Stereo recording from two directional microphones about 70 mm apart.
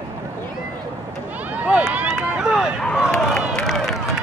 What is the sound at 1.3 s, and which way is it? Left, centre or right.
Run, right.